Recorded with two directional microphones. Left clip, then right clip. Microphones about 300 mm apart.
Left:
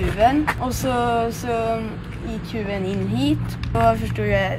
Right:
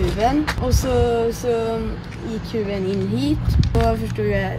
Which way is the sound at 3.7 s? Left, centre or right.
Centre.